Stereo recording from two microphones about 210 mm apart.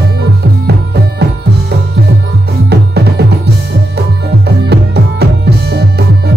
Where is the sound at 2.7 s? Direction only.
50° right (ahead or behind).